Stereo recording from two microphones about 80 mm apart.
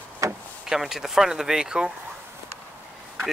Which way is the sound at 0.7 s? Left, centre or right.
Centre.